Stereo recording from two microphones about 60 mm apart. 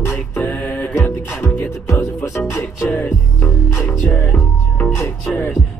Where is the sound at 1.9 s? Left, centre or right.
Left.